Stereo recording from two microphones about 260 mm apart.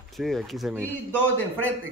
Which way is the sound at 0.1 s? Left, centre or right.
Centre.